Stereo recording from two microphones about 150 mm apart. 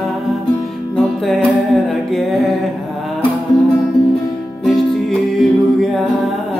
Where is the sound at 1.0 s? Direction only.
Centre (ahead or behind).